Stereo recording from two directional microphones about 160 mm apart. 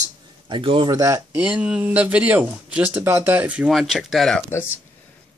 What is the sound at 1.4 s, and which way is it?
A man's voice, 10° right (ahead or behind).